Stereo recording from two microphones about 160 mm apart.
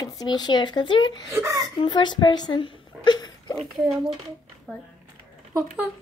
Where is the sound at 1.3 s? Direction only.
20° right (ahead or behind).